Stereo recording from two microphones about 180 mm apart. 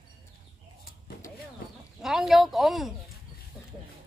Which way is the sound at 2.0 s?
Centre (ahead or behind).